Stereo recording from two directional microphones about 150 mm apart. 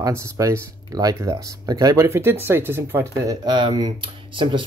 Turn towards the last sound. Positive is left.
turn(degrees=-35)  # may be behind; listen again after turning